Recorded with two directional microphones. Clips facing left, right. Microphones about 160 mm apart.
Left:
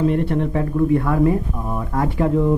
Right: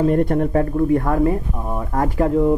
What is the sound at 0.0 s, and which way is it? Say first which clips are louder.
Speech: right 2 dB; 45° right (ahead or behind).